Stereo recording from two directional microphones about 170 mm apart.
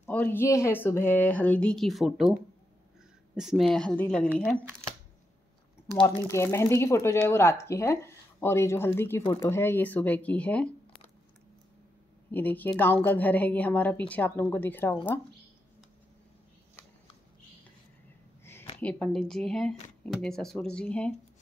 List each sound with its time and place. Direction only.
0.0 s a woman's voice: 10° left (ahead or behind)
3.3 s speech: centre (ahead or behind)
4.3 s speech: 10° right (ahead or behind)
6.0 s a woman's voice: 15° left (ahead or behind)
12.3 s a woman's voice: 10° left (ahead or behind)
18.4 s a sound: 15° left (ahead or behind)
18.8 s speech: 10° left (ahead or behind)